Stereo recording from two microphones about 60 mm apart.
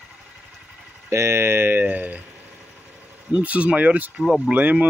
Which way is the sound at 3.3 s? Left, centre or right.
Right.